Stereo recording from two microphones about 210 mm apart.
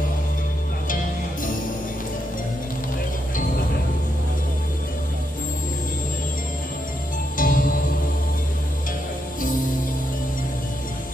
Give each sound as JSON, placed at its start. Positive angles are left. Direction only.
{"t": 7.3, "sound": "music", "side_deg": 40}